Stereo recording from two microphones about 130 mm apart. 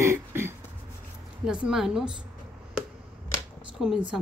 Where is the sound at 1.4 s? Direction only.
5° right (ahead or behind).